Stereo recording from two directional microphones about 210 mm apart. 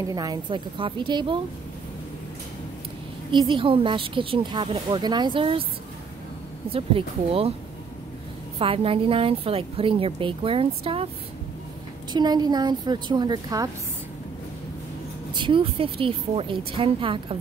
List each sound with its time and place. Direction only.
0.1 s a woman's voice: 20° right (ahead or behind)
3.3 s a woman's voice: 20° right (ahead or behind)
6.7 s a woman's voice: 25° right (ahead or behind)
8.5 s a woman's voice: 25° right (ahead or behind)
12.1 s a woman's voice: 20° right (ahead or behind)
15.3 s a woman's voice: 25° right (ahead or behind)